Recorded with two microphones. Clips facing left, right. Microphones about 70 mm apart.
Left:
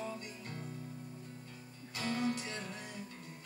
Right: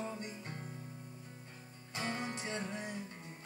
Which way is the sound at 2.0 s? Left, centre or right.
Right.